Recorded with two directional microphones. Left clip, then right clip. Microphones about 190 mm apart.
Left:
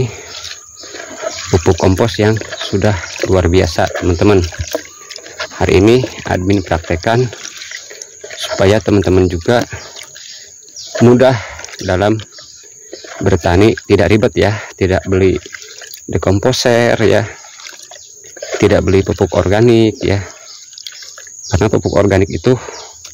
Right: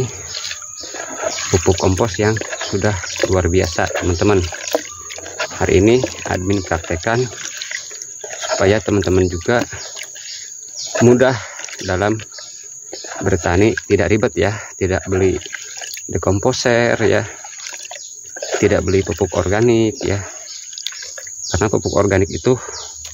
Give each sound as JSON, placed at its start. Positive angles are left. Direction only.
{"t": 0.9, "sound": "toilet flush", "side_deg": 5}
{"t": 1.5, "sound": "speech", "side_deg": 40}
{"t": 2.3, "sound": "a sound", "side_deg": 5}
{"t": 2.8, "sound": "speech", "side_deg": 50}
{"t": 4.4, "sound": "a sound", "side_deg": 0}
{"t": 5.6, "sound": "speech", "side_deg": 45}
{"t": 8.5, "sound": "speech", "side_deg": 45}
{"t": 11.1, "sound": "speech", "side_deg": 45}
{"t": 13.2, "sound": "speech", "side_deg": 45}
{"t": 18.6, "sound": "speech", "side_deg": 45}
{"t": 21.5, "sound": "speech", "side_deg": 45}